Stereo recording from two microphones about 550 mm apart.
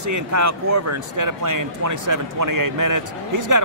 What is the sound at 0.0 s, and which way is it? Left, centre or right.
Speech, right.